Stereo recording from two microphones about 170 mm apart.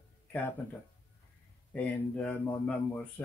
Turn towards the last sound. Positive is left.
turn(degrees=10)  # may be behind; listen again after turning